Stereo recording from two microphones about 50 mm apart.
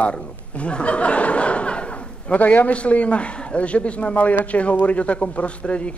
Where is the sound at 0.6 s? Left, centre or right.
Left.